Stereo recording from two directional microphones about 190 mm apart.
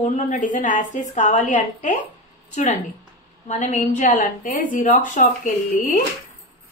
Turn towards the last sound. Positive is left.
turn(degrees=40)  # may be behind; listen again after turning